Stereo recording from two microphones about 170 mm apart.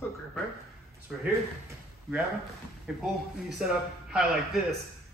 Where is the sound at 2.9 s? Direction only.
5° right (ahead or behind).